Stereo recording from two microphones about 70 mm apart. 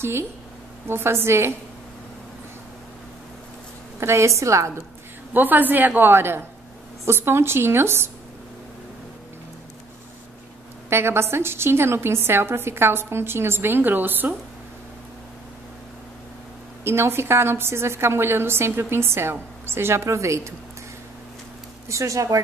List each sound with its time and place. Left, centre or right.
0.8 s a woman's voice: right
4.0 s a woman's voice: right
5.3 s a woman's voice: right
10.9 s a woman's voice: right
16.8 s a woman's voice: right
21.8 s a woman's voice: right